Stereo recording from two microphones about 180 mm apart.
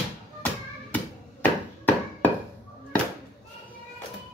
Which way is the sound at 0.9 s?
10° left (ahead or behind).